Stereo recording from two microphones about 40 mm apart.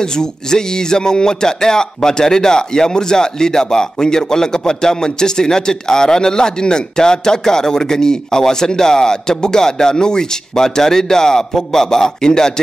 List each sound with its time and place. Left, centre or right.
0.0 s speech: centre